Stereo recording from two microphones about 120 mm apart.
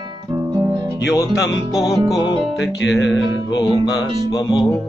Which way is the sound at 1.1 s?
30° left (ahead or behind).